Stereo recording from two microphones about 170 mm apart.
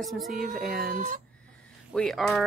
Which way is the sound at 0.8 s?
60° right (ahead or behind).